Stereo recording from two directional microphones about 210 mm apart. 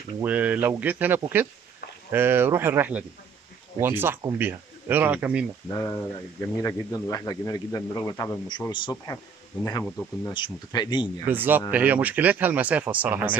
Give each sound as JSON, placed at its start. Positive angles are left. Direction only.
{"t": 0.2, "sound": "speech", "side_deg": -5}
{"t": 5.7, "sound": "a man's voice", "side_deg": 15}
{"t": 11.2, "sound": "speech", "side_deg": -10}